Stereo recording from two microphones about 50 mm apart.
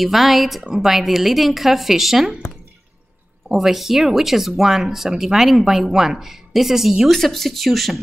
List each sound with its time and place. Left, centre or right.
0.0 s speech: centre
3.4 s speech: centre
7.1 s speech: centre